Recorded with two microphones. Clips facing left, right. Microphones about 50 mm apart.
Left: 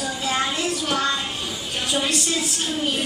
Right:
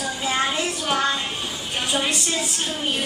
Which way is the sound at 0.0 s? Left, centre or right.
Centre.